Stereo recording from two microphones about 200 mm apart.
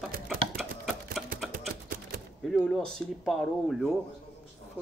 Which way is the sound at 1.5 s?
45° right (ahead or behind).